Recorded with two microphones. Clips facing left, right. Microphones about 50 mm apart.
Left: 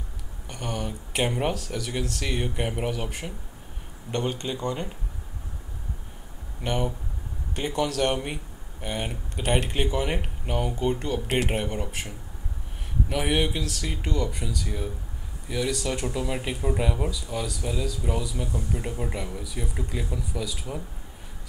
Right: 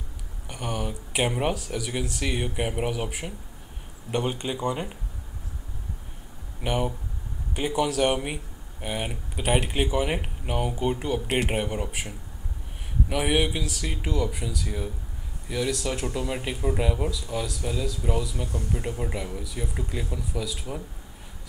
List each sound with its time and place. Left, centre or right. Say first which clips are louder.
0.5 s speech: right 1 dB; centre
6.6 s speech: right 1 dB; centre